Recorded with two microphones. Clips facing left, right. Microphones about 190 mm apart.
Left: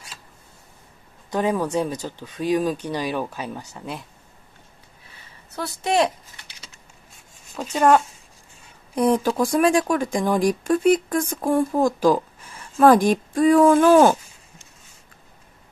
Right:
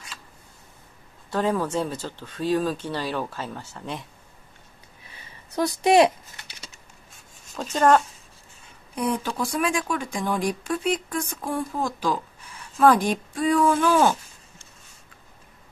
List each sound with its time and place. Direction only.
1.3 s speech: 15° left (ahead or behind)
5.6 s speech: 15° right (ahead or behind)
7.5 s speech: 10° left (ahead or behind)
8.9 s speech: 40° left (ahead or behind)